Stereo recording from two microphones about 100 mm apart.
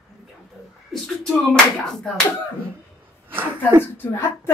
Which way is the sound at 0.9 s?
5° left (ahead or behind).